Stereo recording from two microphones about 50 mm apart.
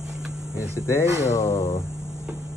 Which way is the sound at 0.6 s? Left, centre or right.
Left.